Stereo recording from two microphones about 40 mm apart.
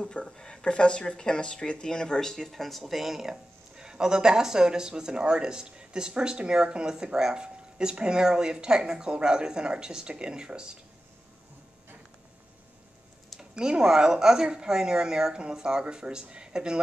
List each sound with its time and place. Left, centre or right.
0.2 s speech: centre
2.5 s speech: centre
13.4 s speech: centre